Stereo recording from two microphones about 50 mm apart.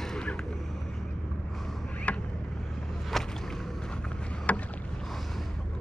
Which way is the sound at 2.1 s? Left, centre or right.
Left.